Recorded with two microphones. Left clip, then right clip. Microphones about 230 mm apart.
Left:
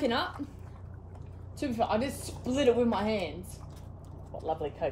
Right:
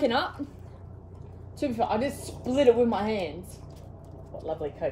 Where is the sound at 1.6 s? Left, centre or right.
Centre.